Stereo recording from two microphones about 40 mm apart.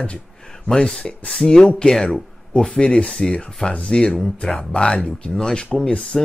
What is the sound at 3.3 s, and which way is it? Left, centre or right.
Speech, left.